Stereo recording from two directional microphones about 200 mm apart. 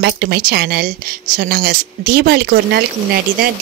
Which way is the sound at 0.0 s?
55° right (ahead or behind).